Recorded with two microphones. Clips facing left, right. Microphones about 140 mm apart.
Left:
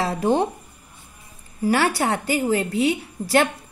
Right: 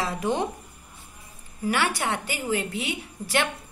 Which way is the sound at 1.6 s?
35° left (ahead or behind).